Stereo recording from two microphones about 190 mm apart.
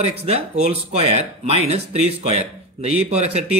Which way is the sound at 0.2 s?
30° right (ahead or behind).